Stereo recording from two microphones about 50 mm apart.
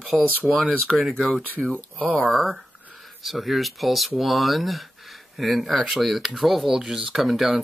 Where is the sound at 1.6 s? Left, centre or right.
Left.